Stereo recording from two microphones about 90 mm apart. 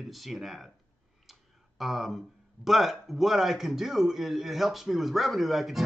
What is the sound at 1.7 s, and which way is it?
Speech, centre (ahead or behind).